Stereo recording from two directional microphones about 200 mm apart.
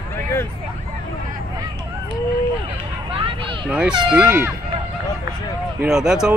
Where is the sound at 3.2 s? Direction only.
25° right (ahead or behind).